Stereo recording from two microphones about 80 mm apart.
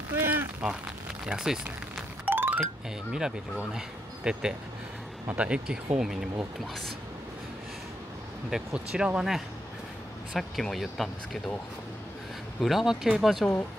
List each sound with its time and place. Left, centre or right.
0.1 s a sound: right
1.2 s speech: centre
2.2 s music: right
2.6 s speech: centre
8.5 s speech: centre
12.5 s speech: centre